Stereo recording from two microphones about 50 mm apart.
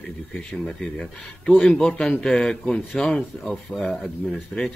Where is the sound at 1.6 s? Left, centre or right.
Centre.